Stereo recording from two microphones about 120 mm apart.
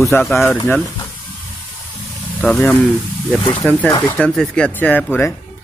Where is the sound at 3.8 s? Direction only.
10° left (ahead or behind).